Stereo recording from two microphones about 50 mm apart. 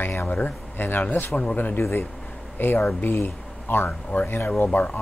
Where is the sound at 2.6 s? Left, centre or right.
Left.